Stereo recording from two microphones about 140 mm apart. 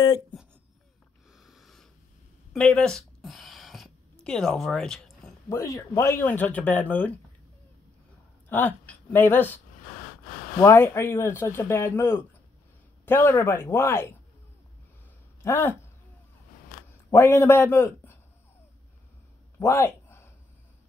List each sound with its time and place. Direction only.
0.3 s a sound: 5° left (ahead or behind)
5.5 s speech: 20° left (ahead or behind)
8.5 s speech: 10° left (ahead or behind)
10.6 s speech: 20° left (ahead or behind)
15.4 s speech: 15° left (ahead or behind)
17.1 s a man's voice: 20° left (ahead or behind)
19.6 s a sound: 20° left (ahead or behind)